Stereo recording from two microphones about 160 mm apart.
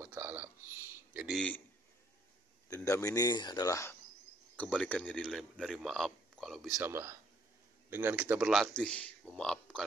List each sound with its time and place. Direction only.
0.0 s a sound: 10° right (ahead or behind)
1.2 s speech: centre (ahead or behind)
2.7 s speech: 20° left (ahead or behind)
4.6 s speech: 10° left (ahead or behind)
6.8 s speech: 15° right (ahead or behind); by 9.8 s 5° left (ahead or behind)